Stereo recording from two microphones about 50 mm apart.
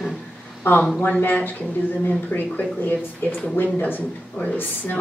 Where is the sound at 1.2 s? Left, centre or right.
Left.